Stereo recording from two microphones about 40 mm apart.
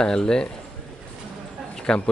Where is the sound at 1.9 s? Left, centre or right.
Centre.